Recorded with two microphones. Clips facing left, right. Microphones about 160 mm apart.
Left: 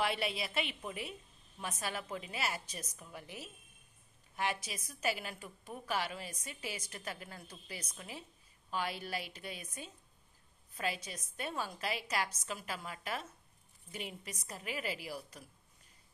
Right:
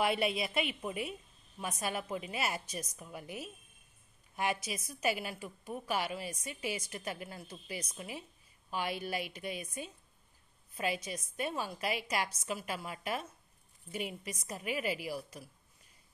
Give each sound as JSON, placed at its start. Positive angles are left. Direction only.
{"t": 0.0, "sound": "a woman's voice", "side_deg": -15}